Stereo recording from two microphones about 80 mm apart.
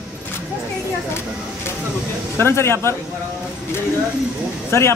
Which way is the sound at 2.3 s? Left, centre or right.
Left.